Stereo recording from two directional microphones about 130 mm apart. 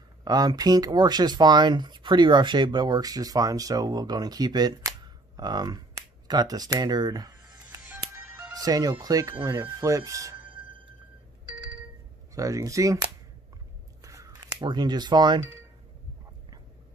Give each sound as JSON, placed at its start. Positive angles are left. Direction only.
{"t": 0.2, "sound": "speech", "side_deg": -30}
{"t": 7.5, "sound": "music", "side_deg": -15}
{"t": 8.5, "sound": "speech", "side_deg": -30}
{"t": 10.3, "sound": "music", "side_deg": -40}
{"t": 11.4, "sound": "ringtone", "side_deg": -40}
{"t": 12.4, "sound": "speech", "side_deg": -25}
{"t": 14.0, "sound": "a sound", "side_deg": -25}